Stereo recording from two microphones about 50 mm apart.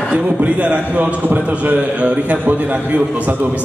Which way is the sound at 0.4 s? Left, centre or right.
Right.